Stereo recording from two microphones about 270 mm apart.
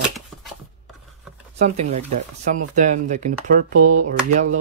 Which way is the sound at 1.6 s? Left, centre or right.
Right.